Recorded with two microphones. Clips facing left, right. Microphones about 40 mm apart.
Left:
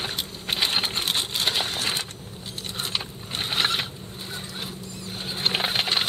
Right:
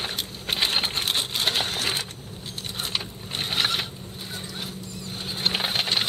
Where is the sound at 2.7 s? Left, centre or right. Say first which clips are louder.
Even; centre.